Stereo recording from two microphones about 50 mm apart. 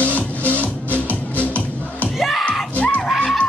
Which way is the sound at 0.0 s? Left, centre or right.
Left.